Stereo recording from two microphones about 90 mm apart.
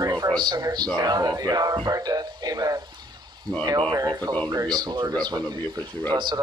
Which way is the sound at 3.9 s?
45° right (ahead or behind).